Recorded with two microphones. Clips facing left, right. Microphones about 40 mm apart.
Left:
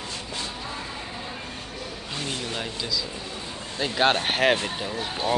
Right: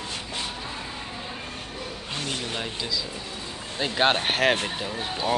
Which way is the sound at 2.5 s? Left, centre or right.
Centre.